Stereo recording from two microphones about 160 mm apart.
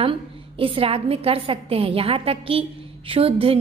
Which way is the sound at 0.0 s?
35° right (ahead or behind).